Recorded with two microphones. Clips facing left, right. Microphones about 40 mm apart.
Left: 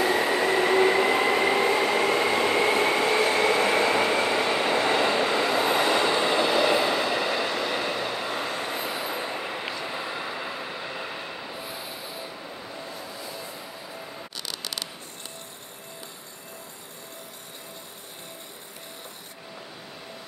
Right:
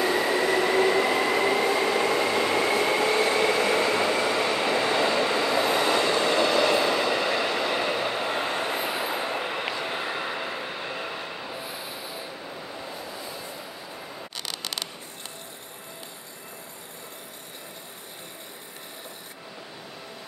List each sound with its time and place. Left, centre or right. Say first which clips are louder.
0.0 s train: left 1 dB; centre
1.8 s train: left 1 dB; centre
8.3 s train: right 2 dB; right
9.2 s train: right 3 dB; right
9.8 s train: right 2 dB; right
10.4 s train: right 1 dB; centre
12.7 s vehicle: right 1 dB; centre